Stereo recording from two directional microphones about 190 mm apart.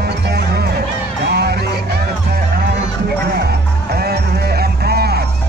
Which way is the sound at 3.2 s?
55° right (ahead or behind).